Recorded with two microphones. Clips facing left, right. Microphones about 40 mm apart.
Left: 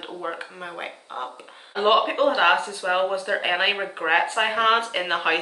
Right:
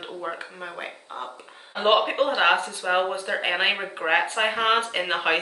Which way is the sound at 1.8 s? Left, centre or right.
Centre.